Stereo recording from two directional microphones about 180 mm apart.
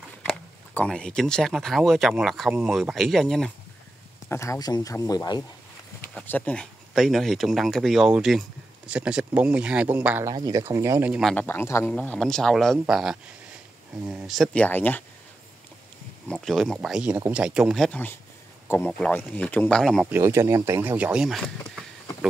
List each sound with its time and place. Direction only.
0.2 s speech: 5° left (ahead or behind)
4.3 s speech: 15° left (ahead or behind)
6.1 s speech: 10° left (ahead or behind); by 10.3 s 10° right (ahead or behind)
10.3 s speech: 20° right (ahead or behind)
11.3 s speech: 10° left (ahead or behind)
16.3 s speech: centre (ahead or behind)
20.1 s speech: 15° right (ahead or behind)